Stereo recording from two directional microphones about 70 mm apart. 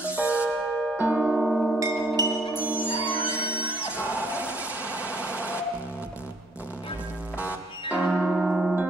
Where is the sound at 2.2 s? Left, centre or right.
Right.